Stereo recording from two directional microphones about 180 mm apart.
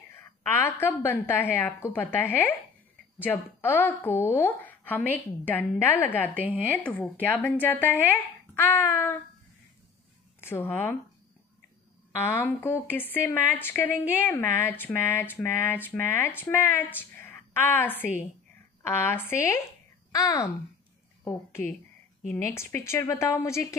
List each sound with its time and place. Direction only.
0.1 s speech: 15° left (ahead or behind)
10.4 s speech: 10° left (ahead or behind)
12.2 s speech: 10° left (ahead or behind)